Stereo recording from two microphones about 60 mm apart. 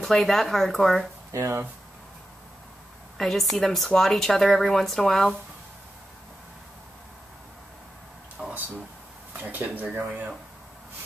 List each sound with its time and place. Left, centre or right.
0.0 s speech: centre
1.3 s speech: right
3.2 s speech: centre
8.4 s a sound: centre
9.3 s speech: right